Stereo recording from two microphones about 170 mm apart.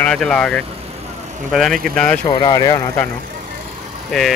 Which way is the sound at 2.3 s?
25° left (ahead or behind).